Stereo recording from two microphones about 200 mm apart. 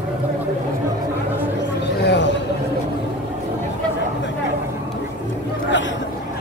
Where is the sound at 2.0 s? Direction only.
60° left (ahead or behind).